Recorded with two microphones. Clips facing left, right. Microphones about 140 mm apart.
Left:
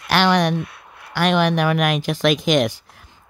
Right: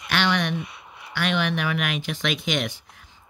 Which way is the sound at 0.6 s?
Centre (ahead or behind).